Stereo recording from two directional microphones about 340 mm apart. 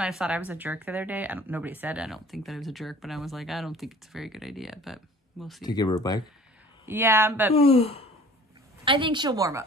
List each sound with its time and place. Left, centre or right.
0.0 s speech: centre
5.6 s speech: centre
6.9 s a woman's voice: centre
7.5 s speech: centre
8.8 s a woman's voice: centre